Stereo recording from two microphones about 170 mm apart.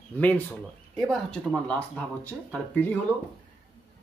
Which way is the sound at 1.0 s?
Centre (ahead or behind).